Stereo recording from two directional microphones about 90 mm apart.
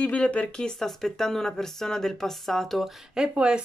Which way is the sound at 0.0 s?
15° left (ahead or behind).